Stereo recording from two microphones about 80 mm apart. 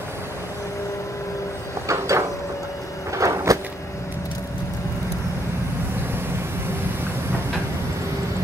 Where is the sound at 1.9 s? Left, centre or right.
Right.